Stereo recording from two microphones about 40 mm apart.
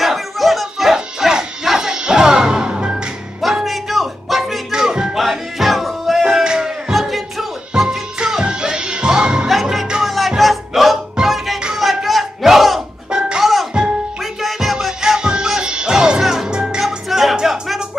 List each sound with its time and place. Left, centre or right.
0.0 s a sound: centre
0.9 s music: centre
3.3 s music: centre
4.6 s music: centre
5.1 s music: centre
6.2 s a sound: centre
6.9 s music: centre
8.2 s music: centre
9.5 s music: centre
11.7 s battle cry: centre
13.4 s music: centre
15.0 s music: centre
16.4 s music: right
16.8 s music: centre